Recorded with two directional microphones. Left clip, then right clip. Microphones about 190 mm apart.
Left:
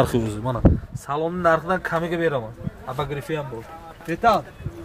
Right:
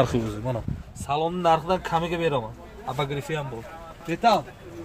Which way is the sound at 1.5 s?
45° left (ahead or behind).